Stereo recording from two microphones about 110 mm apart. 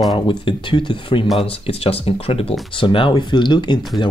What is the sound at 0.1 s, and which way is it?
Speech, 45° left (ahead or behind).